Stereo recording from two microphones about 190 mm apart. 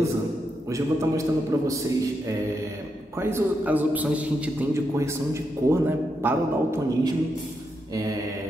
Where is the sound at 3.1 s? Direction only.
15° right (ahead or behind).